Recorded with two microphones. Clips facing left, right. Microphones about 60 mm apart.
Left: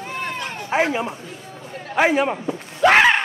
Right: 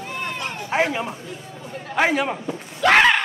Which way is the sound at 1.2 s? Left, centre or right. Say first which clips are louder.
Right 1 dB; left.